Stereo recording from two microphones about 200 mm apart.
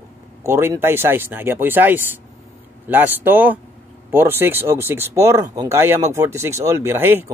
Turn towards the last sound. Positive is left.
turn(degrees=-10)  # may be behind; listen again after turning